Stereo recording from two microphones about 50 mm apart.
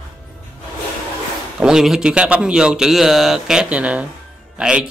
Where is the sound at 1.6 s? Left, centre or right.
Centre.